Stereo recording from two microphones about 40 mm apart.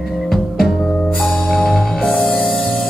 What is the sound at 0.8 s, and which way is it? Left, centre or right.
Music, centre.